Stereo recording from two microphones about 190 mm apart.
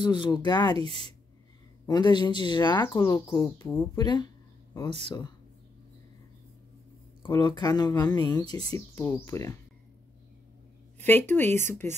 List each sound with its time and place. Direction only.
0.0 s speech: 25° left (ahead or behind)
0.7 s speech: 30° right (ahead or behind)
1.9 s speech: 20° left (ahead or behind)
7.2 s speech: 25° left (ahead or behind)
11.0 s speech: 10° left (ahead or behind)